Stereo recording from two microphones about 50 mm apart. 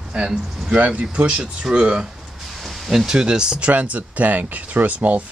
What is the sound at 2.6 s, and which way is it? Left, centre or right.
Speech, centre.